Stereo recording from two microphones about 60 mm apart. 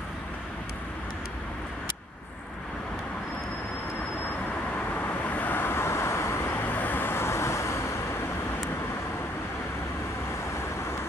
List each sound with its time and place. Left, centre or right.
4.7 s vehicle: left
6.5 s vehicle: left